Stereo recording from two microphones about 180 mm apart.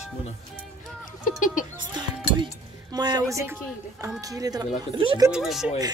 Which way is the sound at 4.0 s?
20° right (ahead or behind).